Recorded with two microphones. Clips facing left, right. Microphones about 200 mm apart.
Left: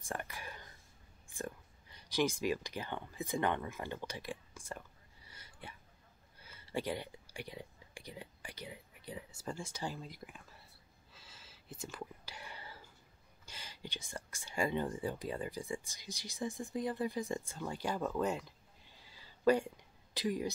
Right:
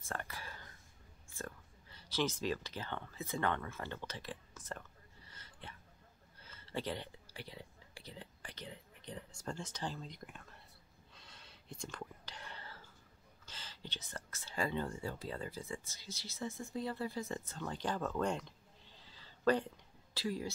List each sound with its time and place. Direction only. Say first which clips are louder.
0.0 s a sound: left 2 dB; 15° left (ahead or behind)
11.1 s whispering: even; 5° left (ahead or behind)
13.5 s speech: left 2 dB; 10° left (ahead or behind)